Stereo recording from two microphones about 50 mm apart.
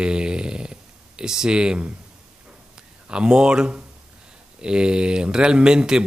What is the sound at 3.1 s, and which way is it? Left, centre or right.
A man's voice, centre.